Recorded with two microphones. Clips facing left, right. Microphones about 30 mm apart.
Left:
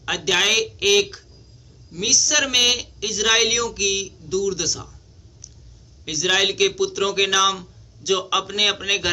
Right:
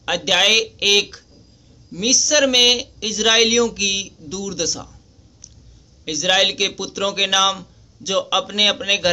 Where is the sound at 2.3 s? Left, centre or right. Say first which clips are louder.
Right 6 dB; right.